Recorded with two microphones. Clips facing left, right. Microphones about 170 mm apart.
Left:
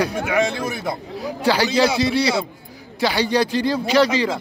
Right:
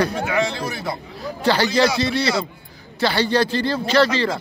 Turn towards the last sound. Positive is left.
turn(degrees=15)  # may be behind; listen again after turning